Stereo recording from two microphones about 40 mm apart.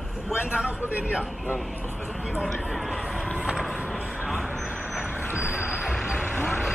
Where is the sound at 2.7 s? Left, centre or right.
Centre.